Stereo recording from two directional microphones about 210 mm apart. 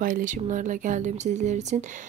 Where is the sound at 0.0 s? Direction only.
40° right (ahead or behind).